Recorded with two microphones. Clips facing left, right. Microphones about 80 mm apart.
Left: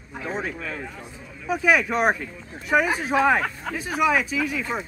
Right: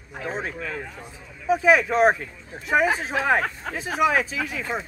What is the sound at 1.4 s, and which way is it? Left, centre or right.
A man's voice, right.